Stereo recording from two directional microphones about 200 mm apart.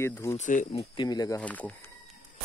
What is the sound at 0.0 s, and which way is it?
Speech, 15° left (ahead or behind).